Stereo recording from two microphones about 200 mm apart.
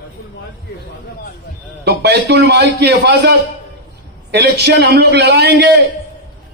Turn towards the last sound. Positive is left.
turn(degrees=-55)  # may be behind; listen again after turning